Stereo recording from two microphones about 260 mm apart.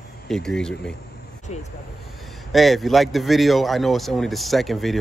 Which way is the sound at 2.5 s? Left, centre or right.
Centre.